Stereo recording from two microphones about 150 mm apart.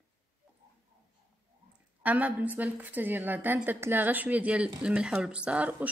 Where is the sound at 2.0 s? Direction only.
10° right (ahead or behind).